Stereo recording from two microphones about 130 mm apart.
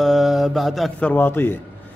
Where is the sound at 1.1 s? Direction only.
15° left (ahead or behind).